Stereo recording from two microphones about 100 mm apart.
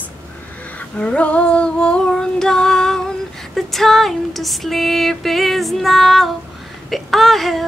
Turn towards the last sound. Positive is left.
turn(degrees=0)  # may be behind; listen again after turning